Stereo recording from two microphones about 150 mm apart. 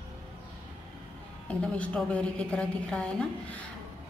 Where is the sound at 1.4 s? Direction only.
10° left (ahead or behind).